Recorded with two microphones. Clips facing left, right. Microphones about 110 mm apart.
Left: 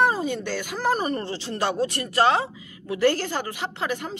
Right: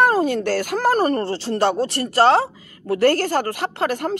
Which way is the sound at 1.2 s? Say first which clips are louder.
Right 7 dB; 35° right (ahead or behind).